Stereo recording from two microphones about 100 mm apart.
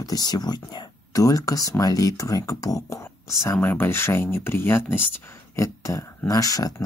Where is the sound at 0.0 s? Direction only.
40° left (ahead or behind); by 5.0 s 25° left (ahead or behind).